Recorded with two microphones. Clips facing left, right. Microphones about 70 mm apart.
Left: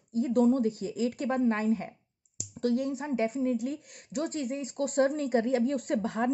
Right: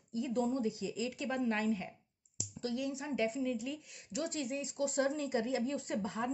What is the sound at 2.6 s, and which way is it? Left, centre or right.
A woman's voice, left.